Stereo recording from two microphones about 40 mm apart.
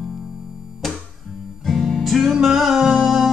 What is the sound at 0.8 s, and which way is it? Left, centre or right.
Music, centre.